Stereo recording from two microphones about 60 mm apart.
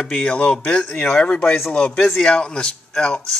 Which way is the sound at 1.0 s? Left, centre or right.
Centre.